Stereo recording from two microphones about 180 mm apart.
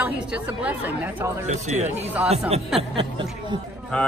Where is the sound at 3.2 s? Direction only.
25° right (ahead or behind).